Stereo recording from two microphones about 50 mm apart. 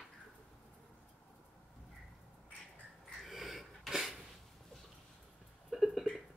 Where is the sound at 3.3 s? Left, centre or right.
Centre.